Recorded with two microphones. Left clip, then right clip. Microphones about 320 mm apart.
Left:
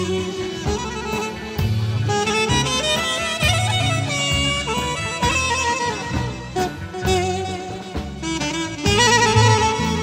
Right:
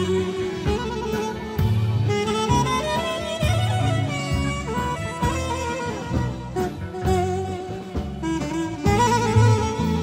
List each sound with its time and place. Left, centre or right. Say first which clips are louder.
2.0 s music: left 3 dB; left
4.1 s bagpipes: left 7 dB; left
8.3 s music: left 2 dB; left